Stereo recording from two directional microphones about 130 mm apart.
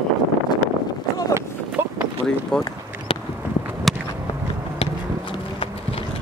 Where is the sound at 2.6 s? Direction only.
45° left (ahead or behind).